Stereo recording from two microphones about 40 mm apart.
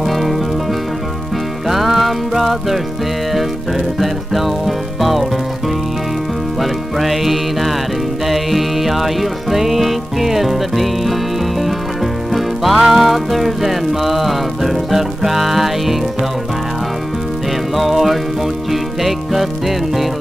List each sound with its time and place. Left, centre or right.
1.7 s music: centre
4.0 s music: centre
6.6 s music: centre
12.4 s music: centre
17.7 s music: centre